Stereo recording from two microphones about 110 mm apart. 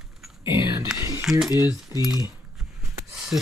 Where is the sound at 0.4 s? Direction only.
45° left (ahead or behind).